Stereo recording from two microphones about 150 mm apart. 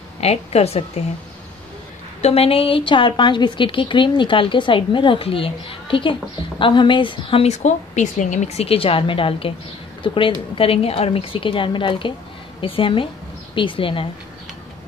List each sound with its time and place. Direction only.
0.2 s a woman's voice: 45° left (ahead or behind)
2.2 s a woman's voice: 40° left (ahead or behind)